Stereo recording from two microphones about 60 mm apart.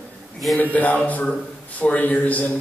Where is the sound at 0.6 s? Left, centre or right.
Left.